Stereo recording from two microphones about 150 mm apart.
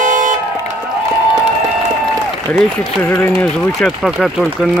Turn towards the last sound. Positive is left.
turn(degrees=0)  # may be behind; listen again after turning